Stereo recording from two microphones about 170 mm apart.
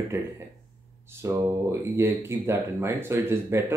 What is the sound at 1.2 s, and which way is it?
Speech, 15° right (ahead or behind).